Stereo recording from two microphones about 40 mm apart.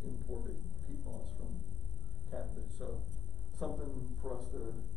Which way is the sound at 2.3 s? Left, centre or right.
Centre.